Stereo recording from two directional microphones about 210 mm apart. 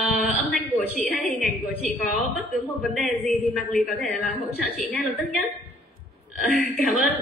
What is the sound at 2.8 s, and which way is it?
A woman's voice, centre (ahead or behind).